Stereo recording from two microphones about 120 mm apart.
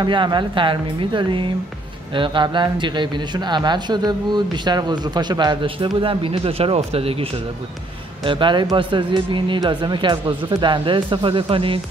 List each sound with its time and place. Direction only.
0.0 s speech: 40° right (ahead or behind)
8.2 s speech: 45° right (ahead or behind)